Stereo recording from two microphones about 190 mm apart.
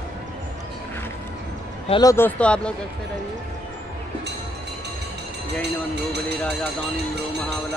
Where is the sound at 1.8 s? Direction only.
25° left (ahead or behind).